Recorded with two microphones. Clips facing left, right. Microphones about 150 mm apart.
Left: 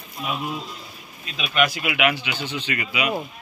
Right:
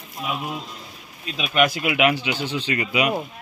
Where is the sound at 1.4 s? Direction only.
45° right (ahead or behind).